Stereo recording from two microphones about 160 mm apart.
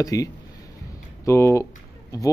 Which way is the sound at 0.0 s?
20° left (ahead or behind).